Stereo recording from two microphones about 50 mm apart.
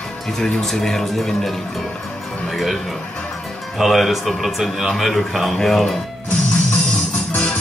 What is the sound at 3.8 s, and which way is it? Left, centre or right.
A man's voice, centre.